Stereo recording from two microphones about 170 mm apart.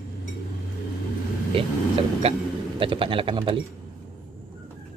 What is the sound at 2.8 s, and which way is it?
Speech, 30° right (ahead or behind).